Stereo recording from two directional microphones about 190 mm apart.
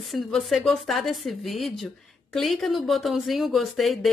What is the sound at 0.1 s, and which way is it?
A woman's voice, centre (ahead or behind).